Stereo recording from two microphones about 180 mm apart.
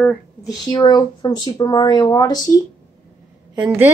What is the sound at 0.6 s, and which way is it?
Speech, 25° left (ahead or behind).